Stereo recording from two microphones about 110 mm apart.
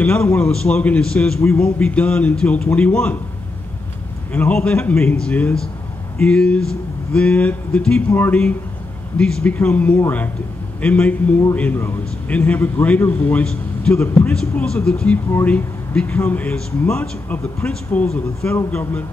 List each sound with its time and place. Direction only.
0.0 s a man's voice: 15° left (ahead or behind)
4.3 s a man's voice: 15° left (ahead or behind)